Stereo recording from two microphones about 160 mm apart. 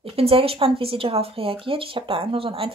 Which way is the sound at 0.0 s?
35° right (ahead or behind).